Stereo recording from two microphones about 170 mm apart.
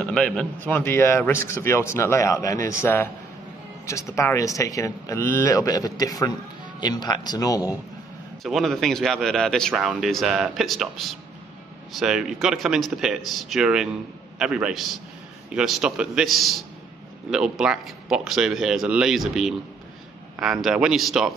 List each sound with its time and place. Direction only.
0.0 s a man's voice: 5° left (ahead or behind); by 7.6 s 20° left (ahead or behind)
8.5 s a man's voice: centre (ahead or behind)